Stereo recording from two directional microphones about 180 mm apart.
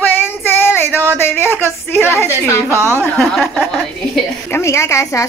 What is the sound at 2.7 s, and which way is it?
Speech, 15° right (ahead or behind).